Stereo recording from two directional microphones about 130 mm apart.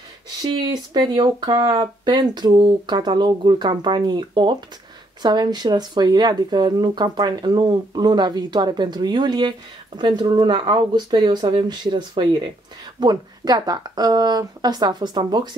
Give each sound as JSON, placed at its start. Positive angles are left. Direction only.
{"t": 0.4, "sound": "speech", "side_deg": -35}